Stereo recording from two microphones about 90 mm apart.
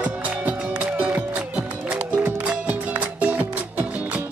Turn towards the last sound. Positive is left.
turn(degrees=-15)  # may be behind; listen again after turning